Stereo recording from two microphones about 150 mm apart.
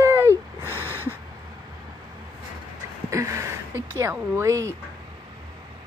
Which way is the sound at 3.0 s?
20° right (ahead or behind).